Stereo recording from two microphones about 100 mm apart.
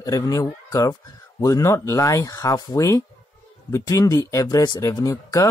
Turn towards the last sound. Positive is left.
turn(degrees=35)  # may be behind; listen again after turning